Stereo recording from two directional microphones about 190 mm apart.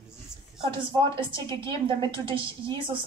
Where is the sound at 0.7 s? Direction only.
25° right (ahead or behind).